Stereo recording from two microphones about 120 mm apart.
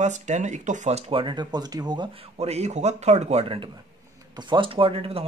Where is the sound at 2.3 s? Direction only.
65° right (ahead or behind).